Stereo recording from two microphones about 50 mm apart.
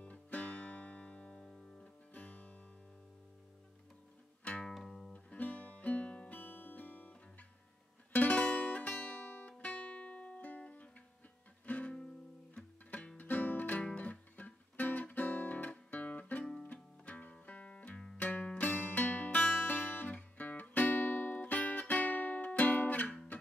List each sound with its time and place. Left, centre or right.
0.0 s music: left
4.6 s music: centre
5.1 s music: left
13.2 s music: left
13.8 s guitar: left
16.6 s music: left